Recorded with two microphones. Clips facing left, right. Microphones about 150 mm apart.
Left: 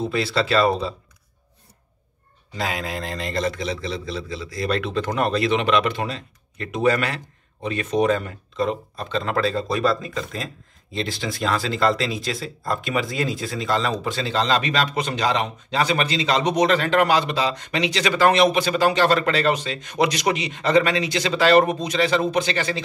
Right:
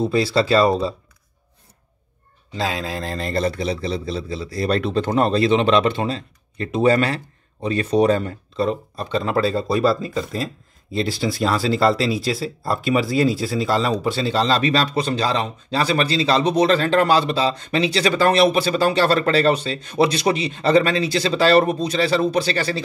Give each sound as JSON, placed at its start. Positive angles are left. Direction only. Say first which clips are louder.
{"t": 0.1, "sound": "speech", "louder": "right 2 dB", "side_deg": -35}
{"t": 2.5, "sound": "speech", "louder": "right 2 dB", "side_deg": -30}